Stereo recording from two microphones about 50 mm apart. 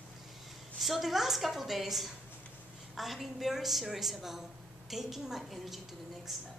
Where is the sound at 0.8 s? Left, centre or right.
Centre.